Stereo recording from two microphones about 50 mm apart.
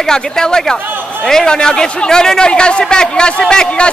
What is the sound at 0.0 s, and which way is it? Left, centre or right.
Speech, centre.